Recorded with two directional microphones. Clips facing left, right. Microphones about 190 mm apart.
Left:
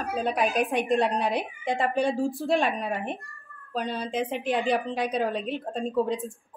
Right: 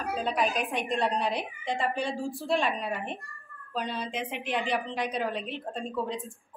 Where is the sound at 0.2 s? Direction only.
50° left (ahead or behind).